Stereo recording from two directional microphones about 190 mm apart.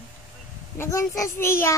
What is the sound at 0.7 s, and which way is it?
A child's voice, 15° left (ahead or behind).